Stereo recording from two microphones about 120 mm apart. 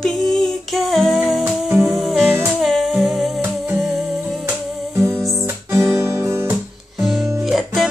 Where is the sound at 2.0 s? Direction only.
Centre (ahead or behind).